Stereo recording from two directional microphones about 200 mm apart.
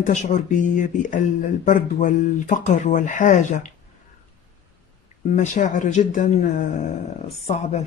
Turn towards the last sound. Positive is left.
turn(degrees=35)  # may be behind; listen again after turning